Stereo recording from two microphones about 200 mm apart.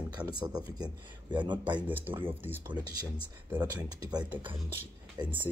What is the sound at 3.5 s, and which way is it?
Speech, 15° right (ahead or behind).